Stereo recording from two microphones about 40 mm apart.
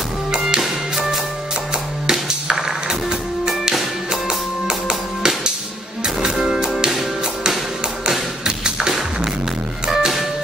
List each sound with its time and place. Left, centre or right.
0.3 s music: centre
0.9 s music: centre
2.0 s music: centre
8.5 s music: centre